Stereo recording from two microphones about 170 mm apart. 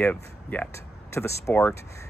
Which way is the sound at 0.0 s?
10° left (ahead or behind).